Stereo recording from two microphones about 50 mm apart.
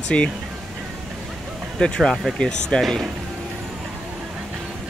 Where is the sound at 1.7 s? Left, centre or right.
Centre.